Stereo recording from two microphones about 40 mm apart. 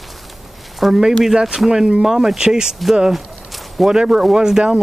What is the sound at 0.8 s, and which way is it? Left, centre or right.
Speech, centre.